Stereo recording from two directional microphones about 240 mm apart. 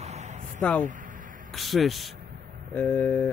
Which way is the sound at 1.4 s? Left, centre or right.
Centre.